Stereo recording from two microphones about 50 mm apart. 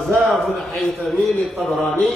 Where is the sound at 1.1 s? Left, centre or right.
Left.